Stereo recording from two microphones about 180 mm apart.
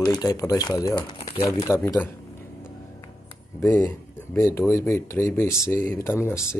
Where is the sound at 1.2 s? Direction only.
30° left (ahead or behind).